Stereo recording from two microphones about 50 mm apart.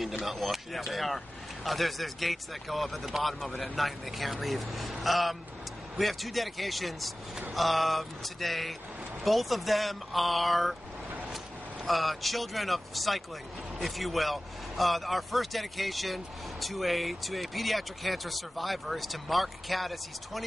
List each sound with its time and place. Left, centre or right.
0.2 s speech: centre
11.8 s speech: centre